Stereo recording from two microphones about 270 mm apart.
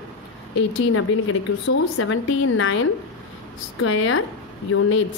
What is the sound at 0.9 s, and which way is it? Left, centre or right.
A woman's voice, left.